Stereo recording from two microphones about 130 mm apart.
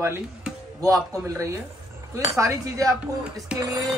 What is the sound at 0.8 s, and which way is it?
Speech, 25° right (ahead or behind).